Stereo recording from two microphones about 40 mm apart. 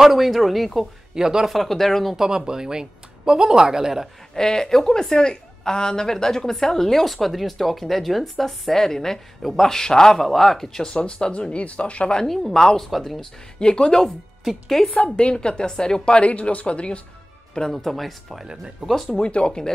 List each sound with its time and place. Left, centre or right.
0.0 s speech: centre
1.1 s speech: centre
1.5 s a woman's voice: centre
2.1 s speech: centre
4.3 s a woman's voice: centre
11.0 s speech: left
11.5 s speech: left
12.3 s a woman's voice: centre
13.6 s a woman's voice: left
16.1 s speech: left
17.6 s a woman's voice: centre
18.8 s speech: right
19.1 s speech: left